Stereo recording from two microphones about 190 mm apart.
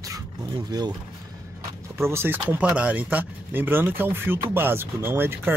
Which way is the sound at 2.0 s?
15° right (ahead or behind).